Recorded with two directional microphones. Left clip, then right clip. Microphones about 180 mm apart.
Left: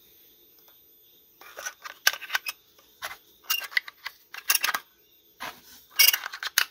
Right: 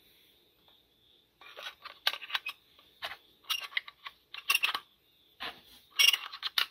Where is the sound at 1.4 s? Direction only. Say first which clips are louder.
Left 6 dB; 15° left (ahead or behind).